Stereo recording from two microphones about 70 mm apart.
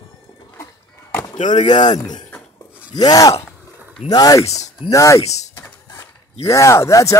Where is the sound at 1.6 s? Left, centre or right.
Left.